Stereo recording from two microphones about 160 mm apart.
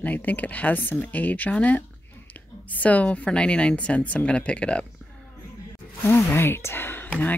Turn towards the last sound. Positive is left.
turn(degrees=10)  # may be behind; listen again after turning